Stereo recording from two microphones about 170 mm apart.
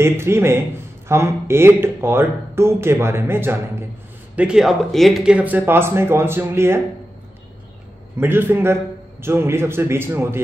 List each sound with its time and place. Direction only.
0.0 s a man's voice: 15° right (ahead or behind)
8.2 s a man's voice: 15° right (ahead or behind)